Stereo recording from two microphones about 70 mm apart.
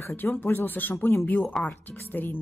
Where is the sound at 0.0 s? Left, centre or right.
Left.